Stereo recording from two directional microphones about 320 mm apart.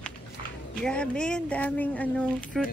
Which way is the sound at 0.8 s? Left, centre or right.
Centre.